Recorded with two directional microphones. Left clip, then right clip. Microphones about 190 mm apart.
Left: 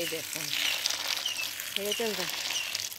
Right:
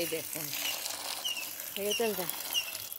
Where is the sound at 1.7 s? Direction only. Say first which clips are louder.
Even; 10° left (ahead or behind).